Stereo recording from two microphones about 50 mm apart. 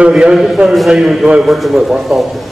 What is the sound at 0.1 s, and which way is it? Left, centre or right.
A man's voice, centre.